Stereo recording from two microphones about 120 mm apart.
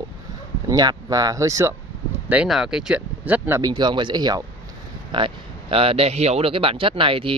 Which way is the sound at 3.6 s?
40° right (ahead or behind).